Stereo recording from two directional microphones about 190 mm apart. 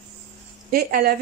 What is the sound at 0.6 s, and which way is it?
Speech, 50° right (ahead or behind).